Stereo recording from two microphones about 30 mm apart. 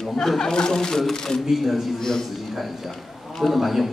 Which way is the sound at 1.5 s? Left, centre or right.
Centre.